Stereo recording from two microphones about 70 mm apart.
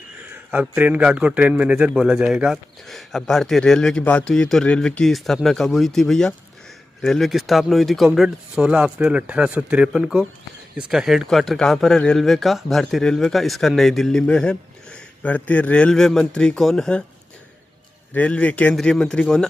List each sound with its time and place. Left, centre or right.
0.3 s a man's voice: right
2.9 s speech: centre
4.0 s a man's voice: centre
4.3 s speech: centre
14.2 s speech: centre
15.9 s speech: centre
18.1 s a man's voice: centre